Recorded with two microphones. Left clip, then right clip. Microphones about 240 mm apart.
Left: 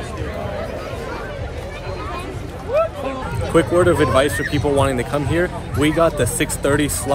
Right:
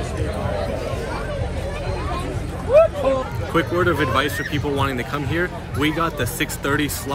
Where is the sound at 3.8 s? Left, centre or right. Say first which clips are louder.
Left 4 dB; centre.